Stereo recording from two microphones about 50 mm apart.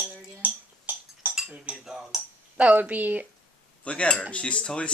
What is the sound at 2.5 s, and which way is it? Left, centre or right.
Speech, right.